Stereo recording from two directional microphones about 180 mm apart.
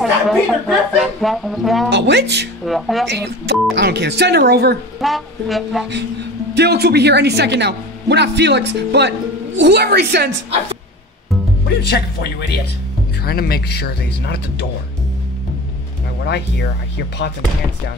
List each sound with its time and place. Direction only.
0.0 s speech: centre (ahead or behind)
1.9 s a woman's voice: 70° right (ahead or behind)
2.6 s speech: centre (ahead or behind)
3.1 s a woman's voice: 70° right (ahead or behind)
5.0 s speech: centre (ahead or behind)
6.5 s a woman's voice: 65° right (ahead or behind)
11.8 s speech: 65° left (ahead or behind)